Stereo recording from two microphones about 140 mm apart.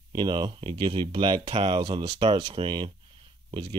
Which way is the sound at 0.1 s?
35° right (ahead or behind).